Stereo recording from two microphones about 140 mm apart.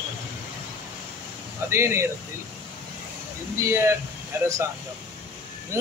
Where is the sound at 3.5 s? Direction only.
20° right (ahead or behind).